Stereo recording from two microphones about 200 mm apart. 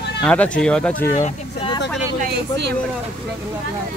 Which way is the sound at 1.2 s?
25° left (ahead or behind).